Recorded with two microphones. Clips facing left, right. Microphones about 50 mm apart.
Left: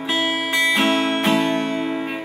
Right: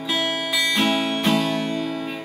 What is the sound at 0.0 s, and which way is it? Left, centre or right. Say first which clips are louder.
Music: left 3 dB; left.